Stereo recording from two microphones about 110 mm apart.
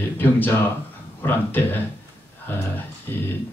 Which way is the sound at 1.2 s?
20° left (ahead or behind).